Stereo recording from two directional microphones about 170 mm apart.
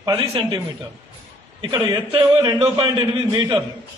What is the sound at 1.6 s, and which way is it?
A man's voice, 25° right (ahead or behind).